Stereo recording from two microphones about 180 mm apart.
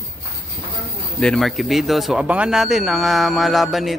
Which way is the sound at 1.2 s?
5° left (ahead or behind).